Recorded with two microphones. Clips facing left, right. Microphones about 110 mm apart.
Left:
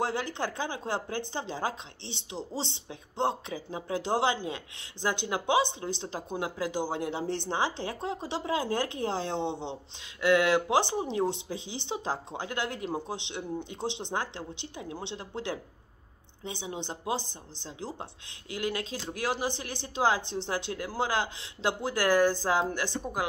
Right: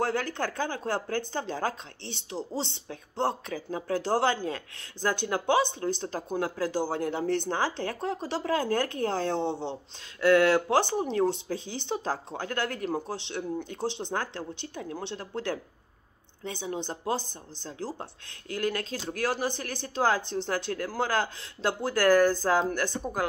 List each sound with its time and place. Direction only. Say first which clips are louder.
0.0 s speech: right 2 dB; 20° left (ahead or behind)